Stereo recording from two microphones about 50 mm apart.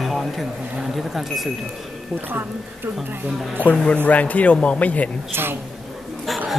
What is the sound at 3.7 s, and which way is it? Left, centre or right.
Speech, centre.